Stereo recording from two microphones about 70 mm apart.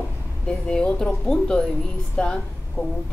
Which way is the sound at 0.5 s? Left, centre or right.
Centre.